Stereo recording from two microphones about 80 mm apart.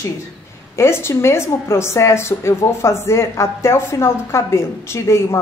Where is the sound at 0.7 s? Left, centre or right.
Left.